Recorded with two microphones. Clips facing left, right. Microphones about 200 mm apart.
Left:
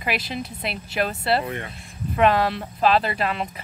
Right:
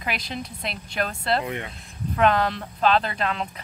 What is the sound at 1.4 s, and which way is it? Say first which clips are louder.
Speech: even; 15° right (ahead or behind).